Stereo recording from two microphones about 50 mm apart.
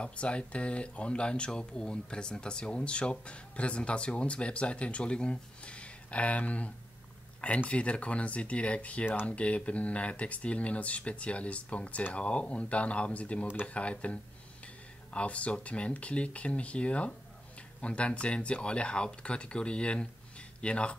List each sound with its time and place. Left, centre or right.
0.0 s speech: left